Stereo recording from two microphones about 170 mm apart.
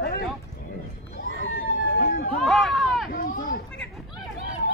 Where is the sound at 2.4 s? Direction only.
Centre (ahead or behind).